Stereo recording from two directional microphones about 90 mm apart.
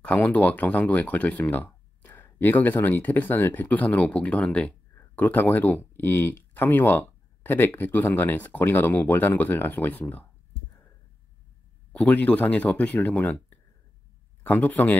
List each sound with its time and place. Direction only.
0.0 s speech: 15° left (ahead or behind)
11.9 s speech: 15° left (ahead or behind)